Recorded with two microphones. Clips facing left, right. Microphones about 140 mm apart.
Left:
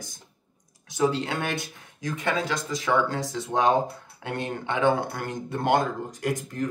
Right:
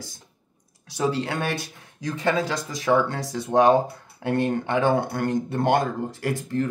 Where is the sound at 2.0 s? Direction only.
25° right (ahead or behind).